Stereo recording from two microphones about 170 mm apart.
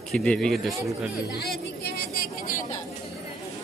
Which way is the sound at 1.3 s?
70° left (ahead or behind).